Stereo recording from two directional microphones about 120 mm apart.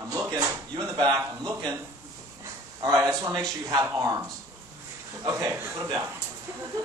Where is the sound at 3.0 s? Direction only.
30° right (ahead or behind).